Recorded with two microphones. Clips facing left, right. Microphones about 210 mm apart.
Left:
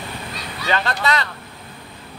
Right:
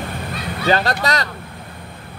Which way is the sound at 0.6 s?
40° right (ahead or behind).